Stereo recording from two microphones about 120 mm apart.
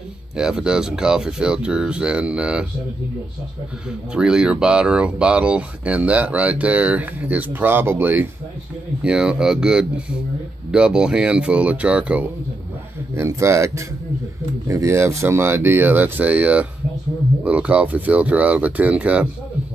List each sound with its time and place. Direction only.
0.4 s speech: 5° right (ahead or behind)
4.1 s speech: 5° right (ahead or behind)
13.1 s speech: 25° right (ahead or behind)